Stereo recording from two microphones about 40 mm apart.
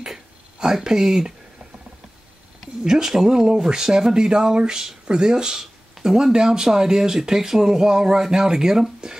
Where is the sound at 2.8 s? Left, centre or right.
Centre.